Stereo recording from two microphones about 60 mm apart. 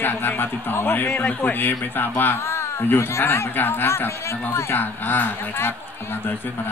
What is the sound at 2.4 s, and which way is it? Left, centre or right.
A man's voice, left.